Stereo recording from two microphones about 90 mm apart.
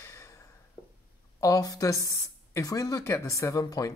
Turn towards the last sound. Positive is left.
turn(degrees=40)  # may be behind; listen again after turning